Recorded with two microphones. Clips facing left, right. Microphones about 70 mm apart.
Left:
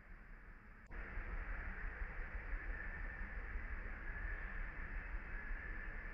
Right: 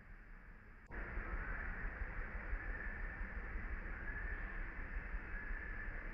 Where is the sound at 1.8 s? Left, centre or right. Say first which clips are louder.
Right 2 dB; centre.